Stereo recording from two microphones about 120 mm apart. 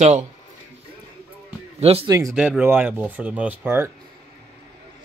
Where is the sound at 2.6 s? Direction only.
15° right (ahead or behind).